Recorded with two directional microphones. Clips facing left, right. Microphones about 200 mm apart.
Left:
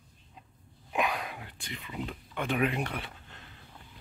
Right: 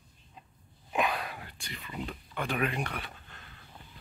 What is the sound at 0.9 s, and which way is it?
Whispering, 10° left (ahead or behind).